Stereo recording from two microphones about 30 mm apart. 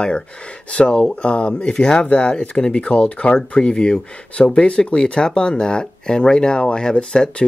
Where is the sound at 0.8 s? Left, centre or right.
Left.